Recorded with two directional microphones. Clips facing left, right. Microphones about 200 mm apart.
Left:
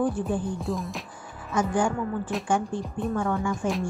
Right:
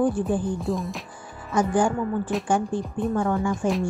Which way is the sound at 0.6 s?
Centre (ahead or behind).